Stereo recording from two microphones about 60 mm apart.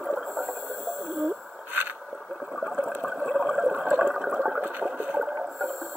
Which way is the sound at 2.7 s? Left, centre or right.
Right.